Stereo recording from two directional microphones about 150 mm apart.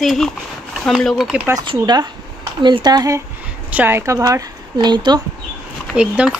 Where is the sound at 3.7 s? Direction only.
15° right (ahead or behind); by 5.2 s 30° right (ahead or behind).